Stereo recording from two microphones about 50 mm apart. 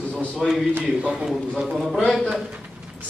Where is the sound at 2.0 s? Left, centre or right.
Centre.